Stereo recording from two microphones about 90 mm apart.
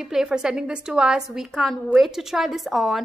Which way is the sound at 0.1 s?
10° right (ahead or behind).